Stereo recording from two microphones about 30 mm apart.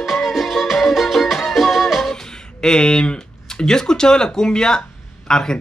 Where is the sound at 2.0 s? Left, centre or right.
Centre.